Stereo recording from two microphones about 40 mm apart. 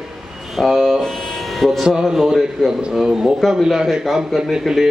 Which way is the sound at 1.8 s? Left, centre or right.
Centre.